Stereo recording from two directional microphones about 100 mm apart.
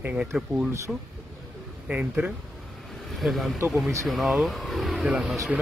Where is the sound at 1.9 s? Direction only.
10° right (ahead or behind).